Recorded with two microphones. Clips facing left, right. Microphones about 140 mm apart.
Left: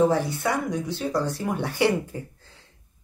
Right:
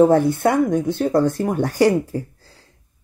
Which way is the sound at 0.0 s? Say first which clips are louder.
Right 8 dB; 50° right (ahead or behind).